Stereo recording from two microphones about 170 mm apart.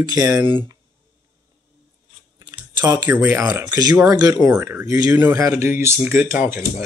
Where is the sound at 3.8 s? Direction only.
20° right (ahead or behind).